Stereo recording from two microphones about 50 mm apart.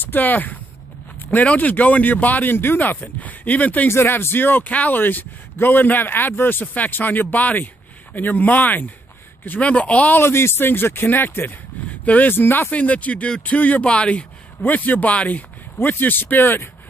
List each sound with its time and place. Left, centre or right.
0.0 s a man's voice: left
3.0 s a man's voice: left
3.9 s a man's voice: left
6.6 s a man's voice: left
10.1 s speech: left
12.0 s speech: left
12.3 s speech: left
12.7 s a man's voice: left